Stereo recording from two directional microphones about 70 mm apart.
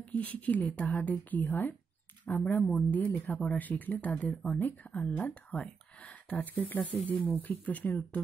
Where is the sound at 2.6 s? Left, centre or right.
Centre.